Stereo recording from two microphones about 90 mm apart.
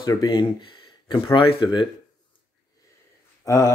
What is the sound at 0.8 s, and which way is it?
Speech, 70° left (ahead or behind).